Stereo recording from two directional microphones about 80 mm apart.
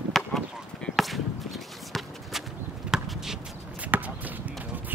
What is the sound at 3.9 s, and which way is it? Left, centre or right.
Basketball bounce, right.